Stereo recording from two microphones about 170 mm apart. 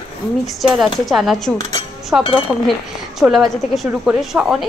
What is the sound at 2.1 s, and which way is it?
A woman's voice, 10° right (ahead or behind).